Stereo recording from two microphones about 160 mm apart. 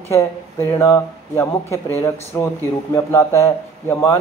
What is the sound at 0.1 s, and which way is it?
Speech, 15° left (ahead or behind).